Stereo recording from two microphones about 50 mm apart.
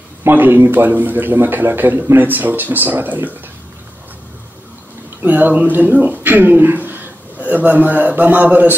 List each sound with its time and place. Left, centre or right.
0.3 s a man's voice: right
5.2 s speech: right